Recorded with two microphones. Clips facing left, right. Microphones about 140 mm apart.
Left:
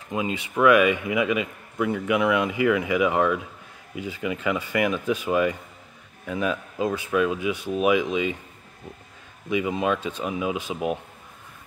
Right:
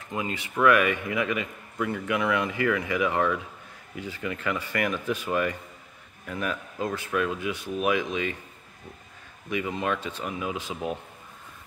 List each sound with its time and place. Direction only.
0.1 s a man's voice: 20° left (ahead or behind)
9.5 s a man's voice: 15° left (ahead or behind)